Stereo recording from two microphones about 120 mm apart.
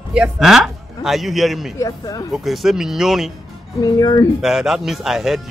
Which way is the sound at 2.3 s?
Centre (ahead or behind).